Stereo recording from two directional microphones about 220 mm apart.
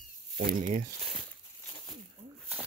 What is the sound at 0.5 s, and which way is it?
Speech, 35° right (ahead or behind).